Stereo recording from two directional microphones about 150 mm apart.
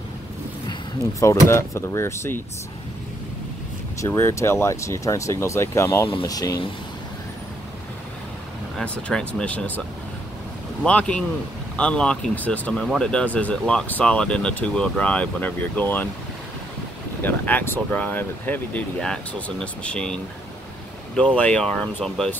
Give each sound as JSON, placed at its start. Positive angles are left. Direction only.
{"t": 1.5, "sound": "speech", "side_deg": 20}
{"t": 4.0, "sound": "speech", "side_deg": 20}
{"t": 8.7, "sound": "speech", "side_deg": 5}
{"t": 10.8, "sound": "speech", "side_deg": 10}
{"t": 17.2, "sound": "speech", "side_deg": 10}
{"t": 21.4, "sound": "speech", "side_deg": 5}